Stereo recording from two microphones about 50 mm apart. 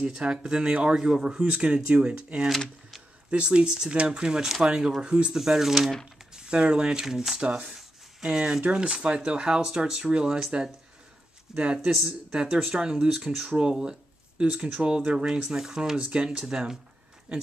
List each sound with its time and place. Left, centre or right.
0.0 s speech: centre
5.3 s speech: centre
6.3 s speech: centre
7.4 s speech: right; by 13.6 s centre
13.6 s speech: centre